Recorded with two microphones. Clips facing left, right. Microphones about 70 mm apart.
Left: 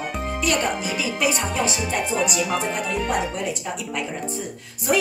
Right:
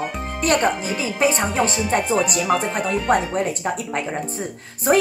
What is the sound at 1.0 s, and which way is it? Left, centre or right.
Speech, right.